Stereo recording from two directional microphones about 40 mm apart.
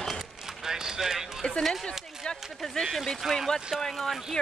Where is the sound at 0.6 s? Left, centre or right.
Centre.